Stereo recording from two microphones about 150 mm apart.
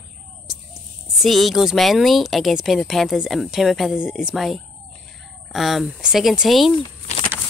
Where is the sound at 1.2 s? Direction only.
Centre (ahead or behind).